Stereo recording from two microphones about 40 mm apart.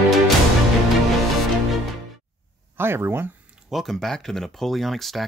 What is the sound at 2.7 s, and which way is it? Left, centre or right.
Speech, right.